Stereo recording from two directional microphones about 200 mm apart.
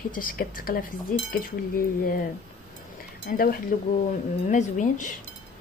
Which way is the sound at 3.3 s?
45° left (ahead or behind).